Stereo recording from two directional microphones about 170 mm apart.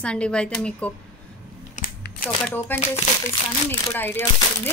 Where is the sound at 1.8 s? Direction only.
60° left (ahead or behind).